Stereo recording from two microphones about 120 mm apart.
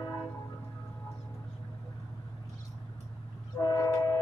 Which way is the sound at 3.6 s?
35° left (ahead or behind).